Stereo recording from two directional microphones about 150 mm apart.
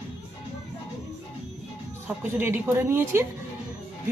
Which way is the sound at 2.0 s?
10° right (ahead or behind).